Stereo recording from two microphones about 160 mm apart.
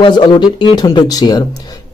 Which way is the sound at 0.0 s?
30° left (ahead or behind).